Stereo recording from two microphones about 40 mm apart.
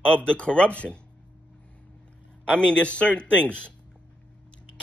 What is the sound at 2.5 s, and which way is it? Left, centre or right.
Speech, left.